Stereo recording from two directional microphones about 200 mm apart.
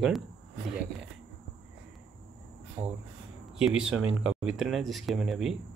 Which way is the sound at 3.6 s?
5° right (ahead or behind).